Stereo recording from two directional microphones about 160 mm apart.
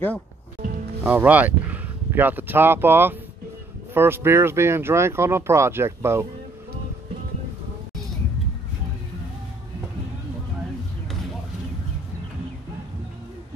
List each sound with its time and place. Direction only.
1.0 s speech: 10° right (ahead or behind)